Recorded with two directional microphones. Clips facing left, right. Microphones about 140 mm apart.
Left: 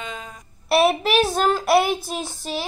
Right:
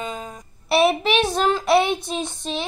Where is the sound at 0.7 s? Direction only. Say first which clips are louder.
Even; centre (ahead or behind).